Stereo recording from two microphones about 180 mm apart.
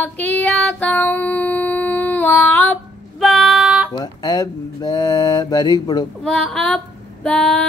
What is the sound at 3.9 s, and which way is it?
Speech, 20° left (ahead or behind).